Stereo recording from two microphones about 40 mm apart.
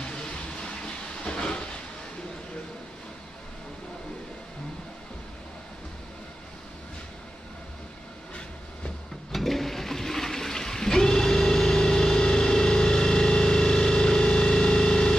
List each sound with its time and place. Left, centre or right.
0.0 s train: left
9.3 s toilet flush: centre